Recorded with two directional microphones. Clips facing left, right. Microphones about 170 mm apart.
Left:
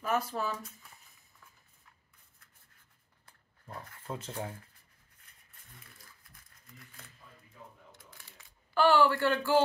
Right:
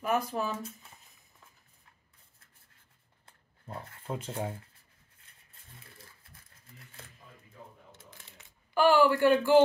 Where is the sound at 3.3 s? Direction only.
25° right (ahead or behind).